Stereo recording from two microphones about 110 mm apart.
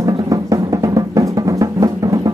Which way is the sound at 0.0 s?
30° right (ahead or behind).